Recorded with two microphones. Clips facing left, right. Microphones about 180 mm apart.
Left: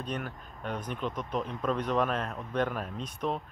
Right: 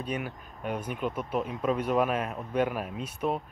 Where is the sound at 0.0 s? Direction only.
10° right (ahead or behind).